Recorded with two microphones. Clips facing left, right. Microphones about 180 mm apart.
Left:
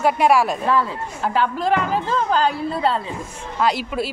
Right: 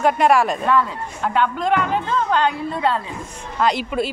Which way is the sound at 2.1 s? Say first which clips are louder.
Left 1 dB; 35° left (ahead or behind).